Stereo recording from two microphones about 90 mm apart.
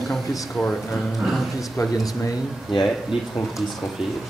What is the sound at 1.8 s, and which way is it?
Speech, 35° left (ahead or behind).